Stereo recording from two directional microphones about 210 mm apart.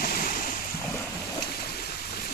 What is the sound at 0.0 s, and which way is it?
Waves, 45° left (ahead or behind).